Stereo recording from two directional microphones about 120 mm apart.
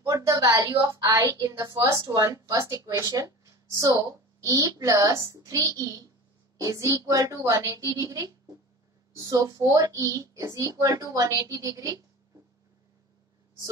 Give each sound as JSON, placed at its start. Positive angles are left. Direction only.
{"t": 0.1, "sound": "a woman's voice", "side_deg": -30}